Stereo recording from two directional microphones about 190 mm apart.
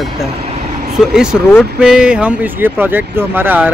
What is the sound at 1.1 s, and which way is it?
Speech, 5° right (ahead or behind).